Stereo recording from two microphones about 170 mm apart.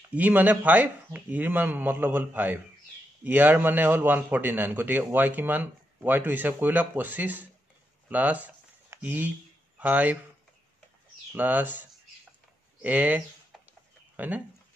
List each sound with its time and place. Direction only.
0.1 s a man's voice: 10° right (ahead or behind)
11.3 s a man's voice: 10° right (ahead or behind)